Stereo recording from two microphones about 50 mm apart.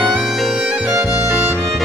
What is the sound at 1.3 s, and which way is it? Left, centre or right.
Music, centre.